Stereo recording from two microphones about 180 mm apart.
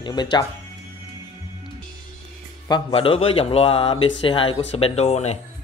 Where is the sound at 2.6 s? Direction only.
25° left (ahead or behind).